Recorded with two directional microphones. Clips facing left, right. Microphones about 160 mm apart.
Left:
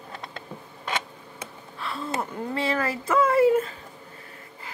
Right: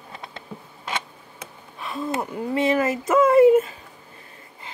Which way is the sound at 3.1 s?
25° right (ahead or behind).